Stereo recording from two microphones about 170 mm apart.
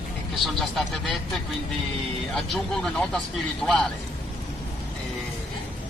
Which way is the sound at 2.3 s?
Centre (ahead or behind).